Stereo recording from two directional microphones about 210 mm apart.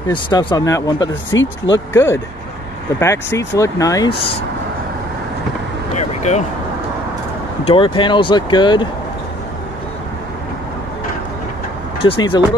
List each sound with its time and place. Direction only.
0.1 s speech: 20° left (ahead or behind)
1.3 s speech: 60° left (ahead or behind)
3.0 s speech: 15° left (ahead or behind)
5.9 s a sound: 35° left (ahead or behind)
7.6 s speech: 25° left (ahead or behind)
12.0 s speech: 25° left (ahead or behind)